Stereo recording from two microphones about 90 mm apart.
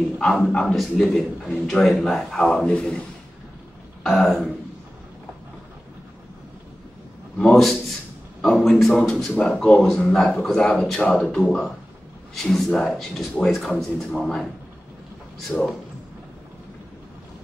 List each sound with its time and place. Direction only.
0.2 s a man's voice: 5° left (ahead or behind)
4.0 s speech: centre (ahead or behind)
7.3 s a man's voice: 5° left (ahead or behind)